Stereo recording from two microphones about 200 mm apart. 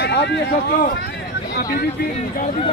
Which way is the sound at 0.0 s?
55° left (ahead or behind).